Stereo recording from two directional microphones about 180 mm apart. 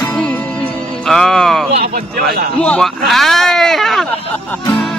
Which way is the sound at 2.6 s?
5° left (ahead or behind).